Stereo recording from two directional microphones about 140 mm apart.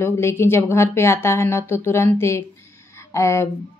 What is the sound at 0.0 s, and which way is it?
Speech, 20° left (ahead or behind).